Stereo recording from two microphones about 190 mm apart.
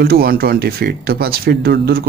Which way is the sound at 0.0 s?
55° right (ahead or behind).